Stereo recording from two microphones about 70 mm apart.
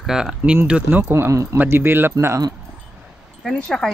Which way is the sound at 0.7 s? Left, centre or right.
Right.